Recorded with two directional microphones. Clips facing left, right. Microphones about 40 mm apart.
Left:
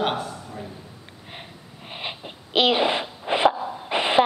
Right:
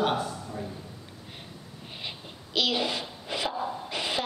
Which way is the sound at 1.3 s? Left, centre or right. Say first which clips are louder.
Left 7 dB; left.